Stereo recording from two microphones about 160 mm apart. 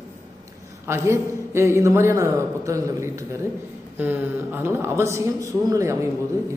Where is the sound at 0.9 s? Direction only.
15° right (ahead or behind).